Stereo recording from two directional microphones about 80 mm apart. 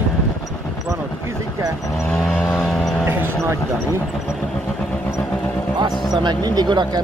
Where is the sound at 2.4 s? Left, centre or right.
Centre.